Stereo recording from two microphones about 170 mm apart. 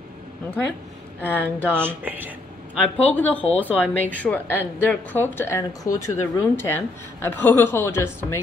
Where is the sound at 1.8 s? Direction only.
10° right (ahead or behind).